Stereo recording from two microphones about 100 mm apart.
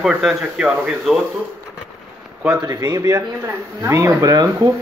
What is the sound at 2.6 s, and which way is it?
Speech, 35° right (ahead or behind).